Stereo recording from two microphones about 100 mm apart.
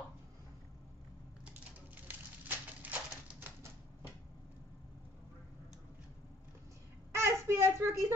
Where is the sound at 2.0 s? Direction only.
15° right (ahead or behind).